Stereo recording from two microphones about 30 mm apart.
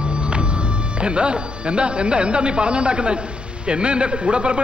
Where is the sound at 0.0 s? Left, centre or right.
Right.